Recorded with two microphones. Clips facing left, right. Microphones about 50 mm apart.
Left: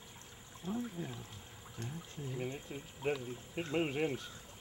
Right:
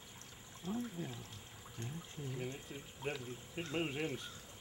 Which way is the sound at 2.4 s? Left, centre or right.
Left.